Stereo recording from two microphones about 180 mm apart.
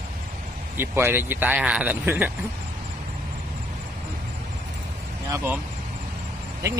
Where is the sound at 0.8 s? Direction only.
10° right (ahead or behind).